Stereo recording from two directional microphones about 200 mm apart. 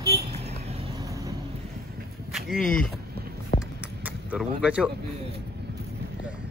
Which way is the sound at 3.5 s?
45° left (ahead or behind).